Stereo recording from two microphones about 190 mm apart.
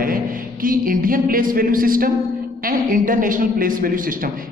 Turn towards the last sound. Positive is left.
turn(degrees=-45)  # may be behind; listen again after turning